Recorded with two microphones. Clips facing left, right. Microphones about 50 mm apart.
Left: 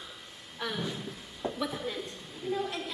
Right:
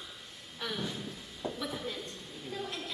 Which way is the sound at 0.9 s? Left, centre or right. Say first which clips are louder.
Left 2 dB; centre.